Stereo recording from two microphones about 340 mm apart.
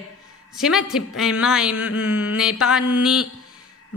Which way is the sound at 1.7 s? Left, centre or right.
Left.